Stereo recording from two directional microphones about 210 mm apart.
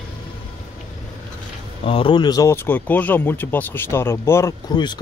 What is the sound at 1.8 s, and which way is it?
Speech, 25° left (ahead or behind).